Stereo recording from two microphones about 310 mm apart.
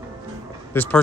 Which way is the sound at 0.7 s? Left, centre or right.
Centre.